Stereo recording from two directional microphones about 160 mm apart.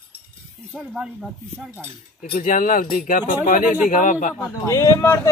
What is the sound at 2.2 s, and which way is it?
Speech, 55° left (ahead or behind).